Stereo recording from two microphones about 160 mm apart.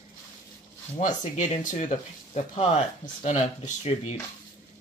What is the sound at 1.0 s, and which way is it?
Speech, 50° left (ahead or behind).